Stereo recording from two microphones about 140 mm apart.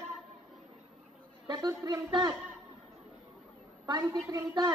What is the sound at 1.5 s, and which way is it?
Speech, 25° right (ahead or behind).